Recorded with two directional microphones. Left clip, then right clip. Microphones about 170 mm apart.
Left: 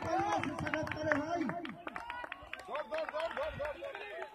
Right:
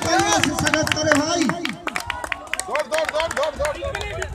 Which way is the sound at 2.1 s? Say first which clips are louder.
Right 17 dB; 35° left (ahead or behind).